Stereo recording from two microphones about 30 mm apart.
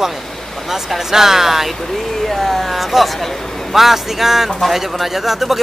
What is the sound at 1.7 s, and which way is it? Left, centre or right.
Speech, centre.